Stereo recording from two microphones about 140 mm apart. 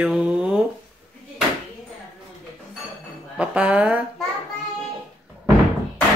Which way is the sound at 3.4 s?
10° right (ahead or behind).